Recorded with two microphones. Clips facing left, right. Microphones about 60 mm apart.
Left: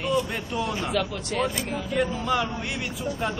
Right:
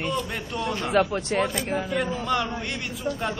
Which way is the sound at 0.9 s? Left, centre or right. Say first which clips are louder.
Right 5 dB; right.